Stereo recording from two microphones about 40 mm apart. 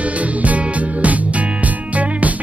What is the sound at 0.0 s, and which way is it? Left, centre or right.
Music, right.